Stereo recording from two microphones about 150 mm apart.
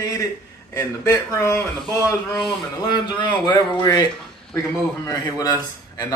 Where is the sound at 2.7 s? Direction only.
30° left (ahead or behind).